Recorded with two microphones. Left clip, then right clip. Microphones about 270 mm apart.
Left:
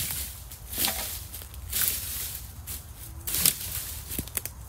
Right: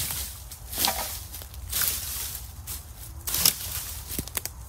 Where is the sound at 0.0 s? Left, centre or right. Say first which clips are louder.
Right 2 dB; centre.